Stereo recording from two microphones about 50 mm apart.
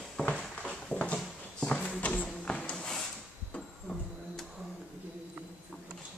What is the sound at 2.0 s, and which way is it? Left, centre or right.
Music, left.